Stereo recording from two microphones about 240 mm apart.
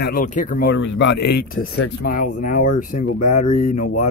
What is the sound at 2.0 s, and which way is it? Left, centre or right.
Speech, left.